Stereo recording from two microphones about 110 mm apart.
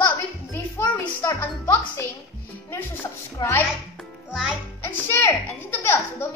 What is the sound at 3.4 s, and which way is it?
Speech, 15° left (ahead or behind).